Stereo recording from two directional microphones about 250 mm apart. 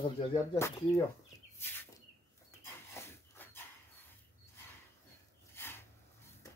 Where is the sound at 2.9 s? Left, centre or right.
Centre.